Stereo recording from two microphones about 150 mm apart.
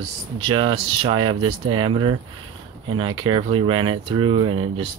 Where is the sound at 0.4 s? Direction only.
35° right (ahead or behind).